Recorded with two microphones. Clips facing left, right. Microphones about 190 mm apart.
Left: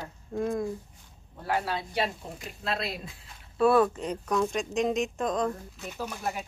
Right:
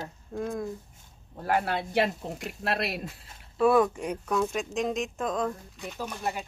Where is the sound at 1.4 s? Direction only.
55° right (ahead or behind); by 3.0 s 70° right (ahead or behind).